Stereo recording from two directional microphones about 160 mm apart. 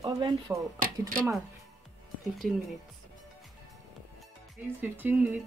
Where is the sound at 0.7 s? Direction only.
60° right (ahead or behind).